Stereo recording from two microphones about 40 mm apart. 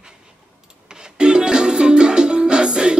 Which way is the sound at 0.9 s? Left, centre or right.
Centre.